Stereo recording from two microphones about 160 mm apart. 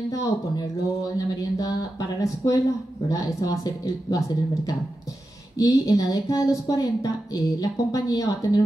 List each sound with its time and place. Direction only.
0.1 s a woman's voice: 20° left (ahead or behind)